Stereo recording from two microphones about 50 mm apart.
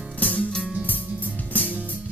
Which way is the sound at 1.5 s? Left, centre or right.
Left.